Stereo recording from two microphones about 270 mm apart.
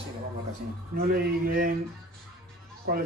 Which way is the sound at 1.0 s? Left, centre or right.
Right.